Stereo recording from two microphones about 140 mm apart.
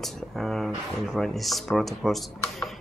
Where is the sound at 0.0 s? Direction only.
Centre (ahead or behind).